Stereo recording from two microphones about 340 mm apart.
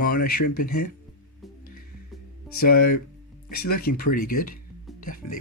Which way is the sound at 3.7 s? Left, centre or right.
Left.